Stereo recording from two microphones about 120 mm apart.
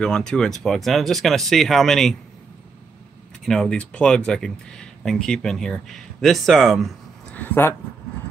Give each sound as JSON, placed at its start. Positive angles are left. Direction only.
{"t": 0.0, "sound": "speech", "side_deg": 5}
{"t": 3.4, "sound": "speech", "side_deg": 5}
{"t": 7.3, "sound": "speech", "side_deg": 15}